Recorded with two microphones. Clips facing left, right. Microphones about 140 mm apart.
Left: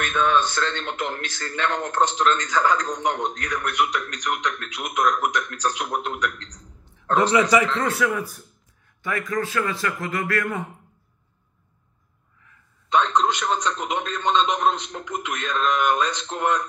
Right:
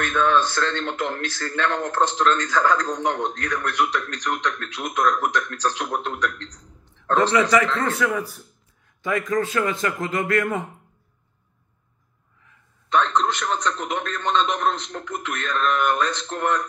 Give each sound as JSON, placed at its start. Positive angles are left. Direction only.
{"t": 0.0, "sound": "speech", "side_deg": 15}
{"t": 7.9, "sound": "speech", "side_deg": 0}
{"t": 9.0, "sound": "a man's voice", "side_deg": -20}
{"t": 12.9, "sound": "speech", "side_deg": 15}